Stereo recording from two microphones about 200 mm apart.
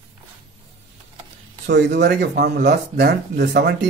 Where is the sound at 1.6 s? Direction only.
55° right (ahead or behind).